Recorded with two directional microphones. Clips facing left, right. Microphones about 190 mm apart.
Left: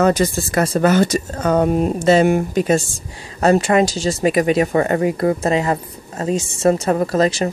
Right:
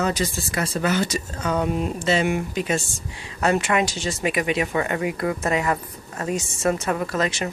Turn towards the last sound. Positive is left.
turn(degrees=35)  # may be behind; listen again after turning